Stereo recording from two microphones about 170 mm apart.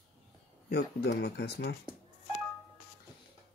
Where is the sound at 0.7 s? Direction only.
65° left (ahead or behind).